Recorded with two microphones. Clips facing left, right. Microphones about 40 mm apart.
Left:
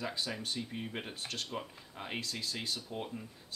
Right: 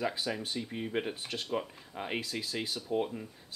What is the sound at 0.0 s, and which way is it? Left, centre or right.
Speech, centre.